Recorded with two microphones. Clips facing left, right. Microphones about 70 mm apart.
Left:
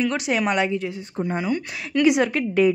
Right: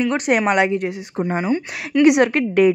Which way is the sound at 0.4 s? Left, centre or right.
Right.